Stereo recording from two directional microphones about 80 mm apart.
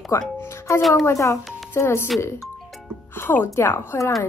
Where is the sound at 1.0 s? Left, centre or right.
Left.